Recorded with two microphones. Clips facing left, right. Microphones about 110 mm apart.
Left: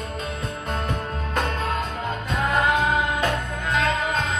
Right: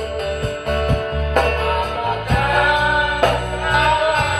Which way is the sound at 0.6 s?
60° right (ahead or behind).